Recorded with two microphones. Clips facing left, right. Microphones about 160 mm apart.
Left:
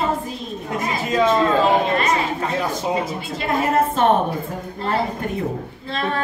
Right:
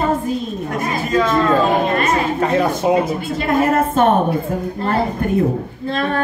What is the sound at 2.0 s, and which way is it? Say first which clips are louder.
A woman's voice: right 4 dB; 55° right (ahead or behind).